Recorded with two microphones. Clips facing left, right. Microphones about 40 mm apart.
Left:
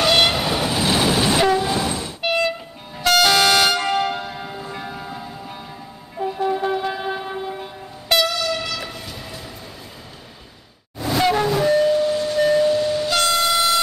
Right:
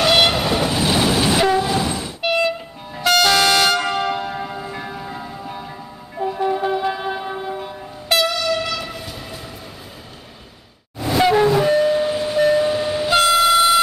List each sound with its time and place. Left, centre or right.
0.0 s train: centre
6.1 s music: centre
6.4 s train: centre
11.0 s train: centre